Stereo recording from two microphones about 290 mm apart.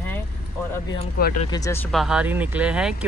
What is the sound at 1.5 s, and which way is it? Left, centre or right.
Speech, centre.